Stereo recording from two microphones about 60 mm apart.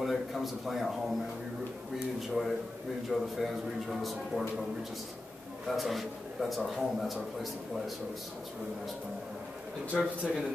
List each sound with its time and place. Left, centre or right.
0.0 s a man's voice: centre
2.1 s a man's voice: centre
5.7 s a man's voice: centre
9.9 s speech: centre